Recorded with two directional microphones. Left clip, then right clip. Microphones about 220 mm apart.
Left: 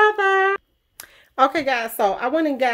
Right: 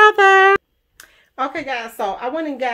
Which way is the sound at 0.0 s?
45° right (ahead or behind).